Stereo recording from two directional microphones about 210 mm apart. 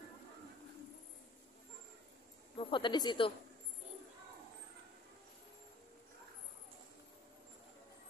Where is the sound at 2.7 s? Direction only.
20° left (ahead or behind).